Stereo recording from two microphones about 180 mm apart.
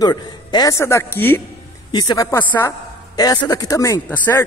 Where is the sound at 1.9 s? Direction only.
25° left (ahead or behind).